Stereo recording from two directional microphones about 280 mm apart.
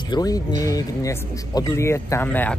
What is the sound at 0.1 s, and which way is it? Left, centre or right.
Speech, centre.